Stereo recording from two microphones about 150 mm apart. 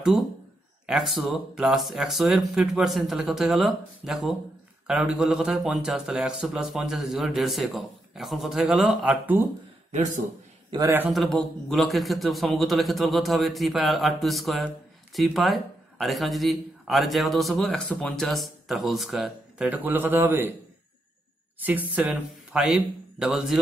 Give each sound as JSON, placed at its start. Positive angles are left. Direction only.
{"t": 0.8, "sound": "a man's voice", "side_deg": 0}
{"t": 9.8, "sound": "a man's voice", "side_deg": -55}
{"t": 11.1, "sound": "a man's voice", "side_deg": 0}
{"t": 21.5, "sound": "speech", "side_deg": -10}